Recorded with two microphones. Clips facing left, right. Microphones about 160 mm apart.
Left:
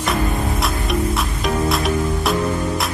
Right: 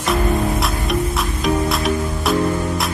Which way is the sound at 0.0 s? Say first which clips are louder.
Right 2 dB; centre (ahead or behind).